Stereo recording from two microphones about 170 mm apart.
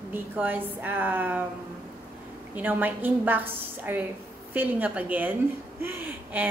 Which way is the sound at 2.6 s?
10° right (ahead or behind).